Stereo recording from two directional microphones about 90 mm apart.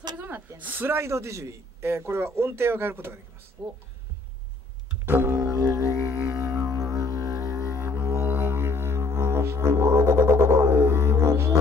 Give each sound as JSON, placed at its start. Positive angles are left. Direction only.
{"t": 0.6, "sound": "a man's voice", "side_deg": -20}
{"t": 3.6, "sound": "speech", "side_deg": -50}
{"t": 5.0, "sound": "music", "side_deg": -25}
{"t": 5.4, "sound": "music", "side_deg": -35}
{"t": 7.7, "sound": "music", "side_deg": -25}